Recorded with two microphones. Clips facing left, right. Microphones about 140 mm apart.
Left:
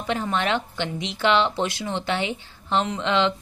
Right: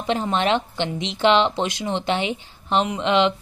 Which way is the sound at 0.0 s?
25° right (ahead or behind).